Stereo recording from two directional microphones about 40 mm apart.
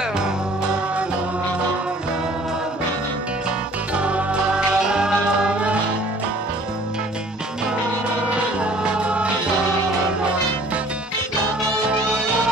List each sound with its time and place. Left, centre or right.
3.9 s music: right
4.7 s music: centre
8.3 s music: right
11.7 s music: right